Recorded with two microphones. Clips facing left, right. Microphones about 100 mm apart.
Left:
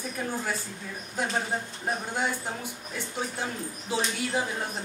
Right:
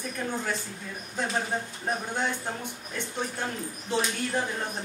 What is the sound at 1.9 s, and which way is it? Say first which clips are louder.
Speech: even; 5° left (ahead or behind).